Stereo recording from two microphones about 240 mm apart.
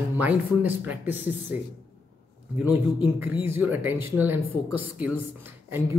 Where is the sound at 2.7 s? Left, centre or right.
Centre.